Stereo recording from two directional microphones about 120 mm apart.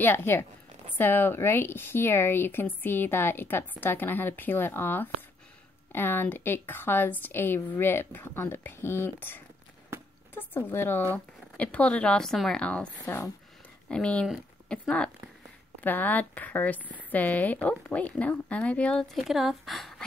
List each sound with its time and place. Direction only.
0.0 s a woman's voice: 15° left (ahead or behind)
14.2 s a sound: 5° right (ahead or behind)
15.8 s a woman's voice: 15° left (ahead or behind)
19.1 s speech: centre (ahead or behind)